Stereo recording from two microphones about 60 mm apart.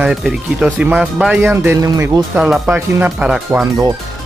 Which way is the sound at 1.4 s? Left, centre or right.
Right.